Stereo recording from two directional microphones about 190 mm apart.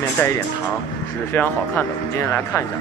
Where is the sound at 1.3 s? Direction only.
10° left (ahead or behind).